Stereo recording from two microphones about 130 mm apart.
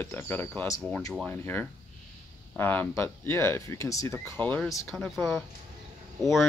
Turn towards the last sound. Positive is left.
turn(degrees=0)  # may be behind; listen again after turning